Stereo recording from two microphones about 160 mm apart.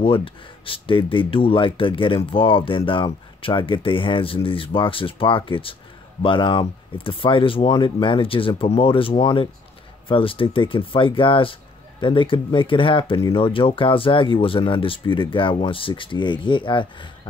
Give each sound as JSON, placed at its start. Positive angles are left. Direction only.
{"t": 0.0, "sound": "speech", "side_deg": 35}